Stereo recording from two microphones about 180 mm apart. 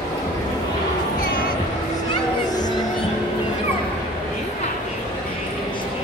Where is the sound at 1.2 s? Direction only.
55° left (ahead or behind).